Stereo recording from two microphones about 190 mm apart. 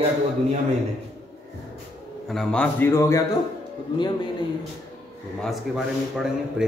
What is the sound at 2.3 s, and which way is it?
Speech, 5° left (ahead or behind).